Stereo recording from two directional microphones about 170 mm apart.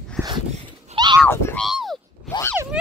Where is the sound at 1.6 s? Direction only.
Centre (ahead or behind).